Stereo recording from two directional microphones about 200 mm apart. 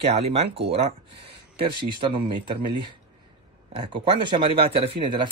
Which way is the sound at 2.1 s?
25° right (ahead or behind).